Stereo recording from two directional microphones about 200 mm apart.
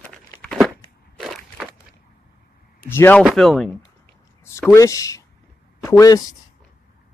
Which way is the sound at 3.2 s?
Centre (ahead or behind).